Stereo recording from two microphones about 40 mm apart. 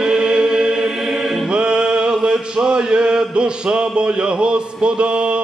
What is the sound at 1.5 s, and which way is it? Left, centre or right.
Music, right.